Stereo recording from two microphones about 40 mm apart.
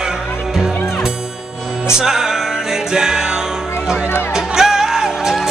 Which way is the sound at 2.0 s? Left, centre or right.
Centre.